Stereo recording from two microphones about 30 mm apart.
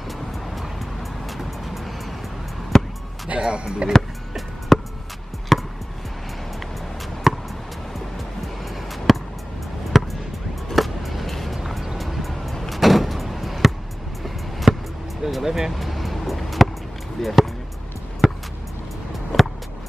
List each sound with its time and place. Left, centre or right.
1.2 s music: centre
2.7 s basketball bounce: centre
3.3 s speech: right
4.7 s music: centre
7.3 s basketball bounce: centre
8.6 s music: centre
9.9 s basketball bounce: centre
10.7 s vehicle: centre
14.2 s music: centre
15.2 s a sound: centre
15.7 s vehicle: centre
17.2 s basketball bounce: centre
18.2 s music: centre